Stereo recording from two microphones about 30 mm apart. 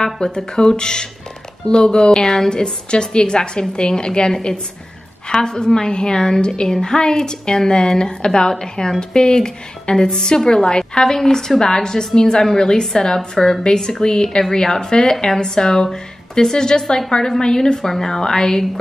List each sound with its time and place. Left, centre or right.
0.0 s a woman's voice: left
2.1 s a woman's voice: centre
2.5 s a woman's voice: left
5.3 s a woman's voice: left